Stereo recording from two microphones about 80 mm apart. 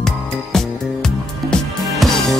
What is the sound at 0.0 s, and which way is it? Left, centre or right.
Music, centre.